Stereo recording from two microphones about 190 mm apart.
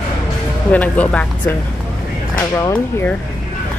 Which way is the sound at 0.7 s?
10° left (ahead or behind).